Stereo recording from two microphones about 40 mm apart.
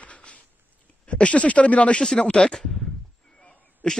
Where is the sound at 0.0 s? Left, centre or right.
Left.